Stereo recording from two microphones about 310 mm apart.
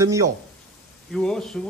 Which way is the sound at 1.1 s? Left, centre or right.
Centre.